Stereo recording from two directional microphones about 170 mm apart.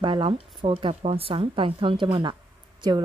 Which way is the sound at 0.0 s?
30° right (ahead or behind).